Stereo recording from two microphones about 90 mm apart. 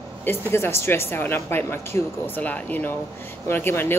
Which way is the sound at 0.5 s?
30° left (ahead or behind).